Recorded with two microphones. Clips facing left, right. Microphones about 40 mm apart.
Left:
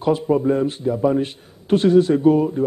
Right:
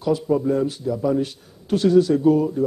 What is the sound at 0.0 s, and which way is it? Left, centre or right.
A man's voice, left.